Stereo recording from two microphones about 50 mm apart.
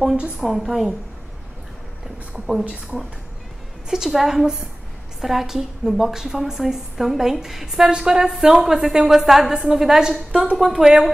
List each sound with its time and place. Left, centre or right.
0.5 s a woman's voice: centre
2.3 s a woman's voice: centre
3.9 s a woman's voice: centre